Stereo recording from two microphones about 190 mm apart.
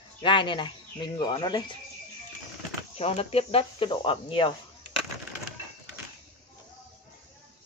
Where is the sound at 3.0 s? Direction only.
30° left (ahead or behind).